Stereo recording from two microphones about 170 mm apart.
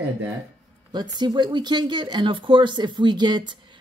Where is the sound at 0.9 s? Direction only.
25° right (ahead or behind).